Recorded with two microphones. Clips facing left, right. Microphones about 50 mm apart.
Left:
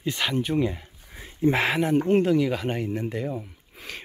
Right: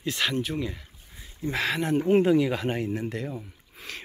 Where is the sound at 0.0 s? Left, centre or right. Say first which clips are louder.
Left 1 dB; centre.